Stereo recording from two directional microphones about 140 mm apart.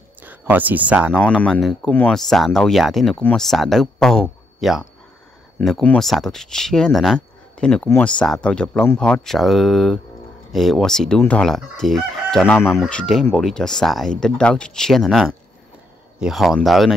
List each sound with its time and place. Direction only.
0.2 s speech: 15° right (ahead or behind)
1.1 s chicken: 5° left (ahead or behind)
1.9 s speech: 15° left (ahead or behind)
2.1 s chicken: centre (ahead or behind)
3.2 s speech: 10° left (ahead or behind)
3.4 s speech: centre (ahead or behind)
5.6 s chicken: centre (ahead or behind)
8.0 s speech: 10° left (ahead or behind)
8.9 s chicken: 5° left (ahead or behind)
12.5 s speech: 15° left (ahead or behind)
12.8 s chicken: 5° left (ahead or behind)